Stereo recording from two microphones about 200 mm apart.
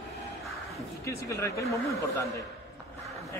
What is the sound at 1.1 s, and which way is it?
Speech, 15° left (ahead or behind).